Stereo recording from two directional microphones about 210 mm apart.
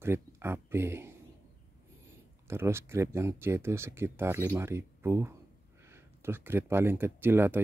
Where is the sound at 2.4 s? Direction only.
10° right (ahead or behind).